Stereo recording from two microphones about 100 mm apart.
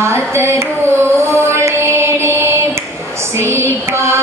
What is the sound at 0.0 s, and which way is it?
Music, 30° right (ahead or behind).